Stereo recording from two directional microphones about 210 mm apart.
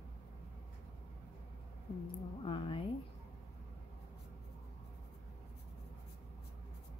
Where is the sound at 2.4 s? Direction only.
25° left (ahead or behind).